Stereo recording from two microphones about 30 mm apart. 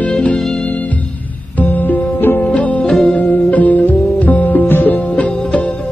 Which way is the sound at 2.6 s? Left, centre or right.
Left.